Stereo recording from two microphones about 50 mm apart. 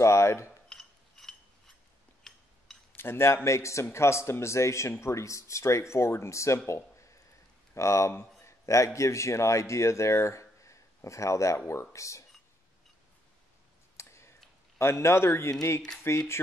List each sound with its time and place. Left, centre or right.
0.0 s speech: left
0.7 s a sound: centre
3.0 s a man's voice: left
3.4 s speech: left
3.9 s speech: left
5.0 s a man's voice: left
13.9 s a sound: left
14.8 s a man's voice: left